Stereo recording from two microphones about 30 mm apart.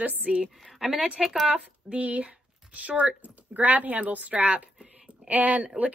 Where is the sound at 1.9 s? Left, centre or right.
Right.